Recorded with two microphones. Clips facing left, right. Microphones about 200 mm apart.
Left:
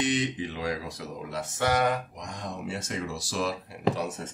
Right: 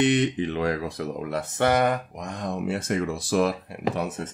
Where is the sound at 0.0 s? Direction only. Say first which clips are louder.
Right 6 dB; 60° right (ahead or behind).